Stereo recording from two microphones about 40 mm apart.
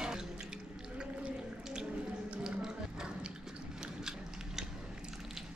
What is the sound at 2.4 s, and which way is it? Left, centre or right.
Music, centre.